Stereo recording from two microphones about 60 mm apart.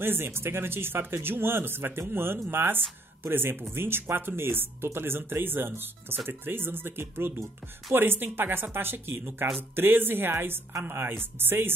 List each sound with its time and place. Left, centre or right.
0.0 s speech: right